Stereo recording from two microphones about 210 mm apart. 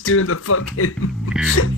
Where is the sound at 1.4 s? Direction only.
75° left (ahead or behind).